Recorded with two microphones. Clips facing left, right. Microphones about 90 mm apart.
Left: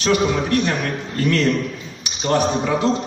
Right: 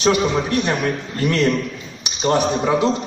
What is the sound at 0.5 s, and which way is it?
Speech, 15° right (ahead or behind).